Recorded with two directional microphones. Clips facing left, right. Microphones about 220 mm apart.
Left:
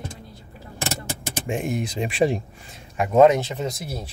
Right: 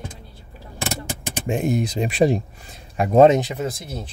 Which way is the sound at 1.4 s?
35° right (ahead or behind).